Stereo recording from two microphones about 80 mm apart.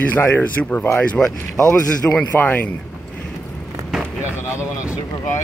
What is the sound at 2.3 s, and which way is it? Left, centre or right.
Speech, left.